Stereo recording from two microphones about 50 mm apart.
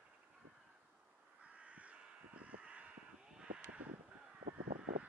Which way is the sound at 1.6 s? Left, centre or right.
Right.